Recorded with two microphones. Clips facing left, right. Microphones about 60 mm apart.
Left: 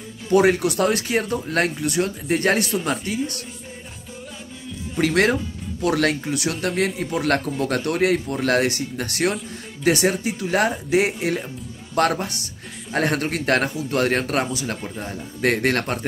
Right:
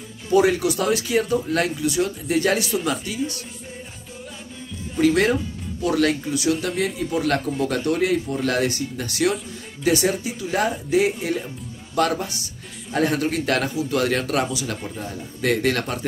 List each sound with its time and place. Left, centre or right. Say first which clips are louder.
0.3 s speech: left 1 dB; left
4.9 s speech: right 1 dB; left
11.9 s speech: left 1 dB; left